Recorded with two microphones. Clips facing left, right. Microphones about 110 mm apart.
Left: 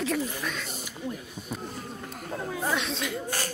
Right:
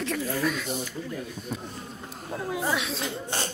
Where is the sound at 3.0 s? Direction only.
25° right (ahead or behind).